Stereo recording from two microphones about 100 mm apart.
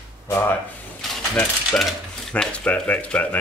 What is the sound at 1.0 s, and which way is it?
Mechanisms, 5° left (ahead or behind).